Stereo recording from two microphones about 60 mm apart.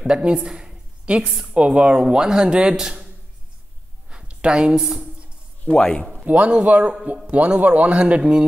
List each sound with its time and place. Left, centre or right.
0.0 s a woman's voice: centre
4.1 s a sound: centre
4.7 s speech: centre
5.7 s speech: centre
6.3 s a man's voice: centre